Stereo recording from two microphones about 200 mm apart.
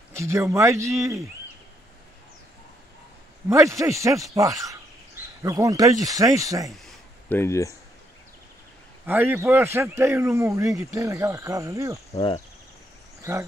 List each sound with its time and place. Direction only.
0.1 s speech: 15° right (ahead or behind)
3.4 s speech: 15° right (ahead or behind)
6.9 s a sound: 10° left (ahead or behind)
9.0 s speech: 10° right (ahead or behind)
12.1 s cricket: 30° left (ahead or behind)
13.2 s speech: 15° right (ahead or behind)